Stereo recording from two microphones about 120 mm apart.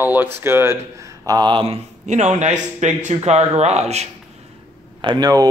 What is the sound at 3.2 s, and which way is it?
Speech, 65° right (ahead or behind).